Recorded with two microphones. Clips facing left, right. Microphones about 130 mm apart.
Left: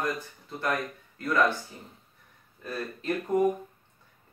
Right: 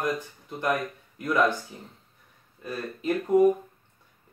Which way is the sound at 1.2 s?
15° right (ahead or behind).